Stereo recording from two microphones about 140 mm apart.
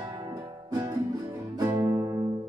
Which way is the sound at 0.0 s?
30° right (ahead or behind).